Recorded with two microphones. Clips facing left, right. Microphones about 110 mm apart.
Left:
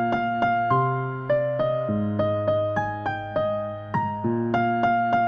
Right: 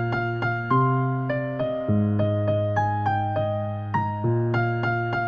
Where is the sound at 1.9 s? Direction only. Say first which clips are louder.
Right 2 dB; 15° left (ahead or behind).